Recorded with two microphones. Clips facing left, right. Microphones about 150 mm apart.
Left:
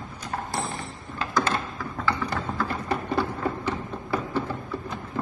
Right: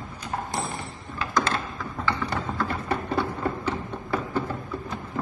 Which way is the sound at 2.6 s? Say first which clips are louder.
Even; 5° left (ahead or behind).